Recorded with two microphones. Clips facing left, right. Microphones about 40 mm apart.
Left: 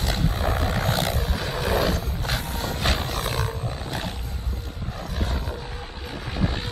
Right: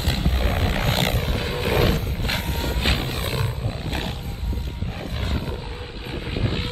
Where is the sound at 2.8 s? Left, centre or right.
Right.